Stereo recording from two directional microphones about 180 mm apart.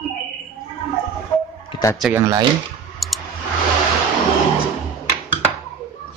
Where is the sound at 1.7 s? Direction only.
20° left (ahead or behind).